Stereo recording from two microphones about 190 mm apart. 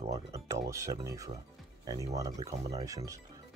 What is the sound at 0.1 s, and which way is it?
Speech, 15° right (ahead or behind).